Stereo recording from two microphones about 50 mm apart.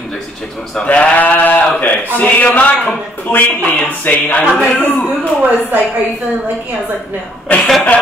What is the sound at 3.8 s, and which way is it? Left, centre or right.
Speech, left.